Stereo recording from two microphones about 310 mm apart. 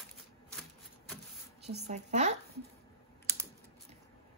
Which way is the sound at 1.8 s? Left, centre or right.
Right.